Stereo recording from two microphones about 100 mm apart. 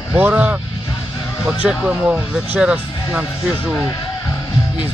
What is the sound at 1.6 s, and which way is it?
Speech, 10° right (ahead or behind).